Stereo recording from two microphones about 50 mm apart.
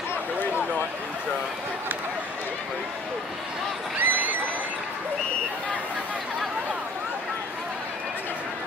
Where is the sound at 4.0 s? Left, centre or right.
Right.